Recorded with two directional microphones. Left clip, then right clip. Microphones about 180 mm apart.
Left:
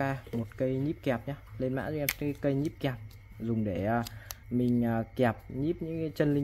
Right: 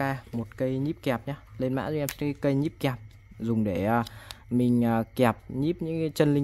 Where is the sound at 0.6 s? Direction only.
25° right (ahead or behind).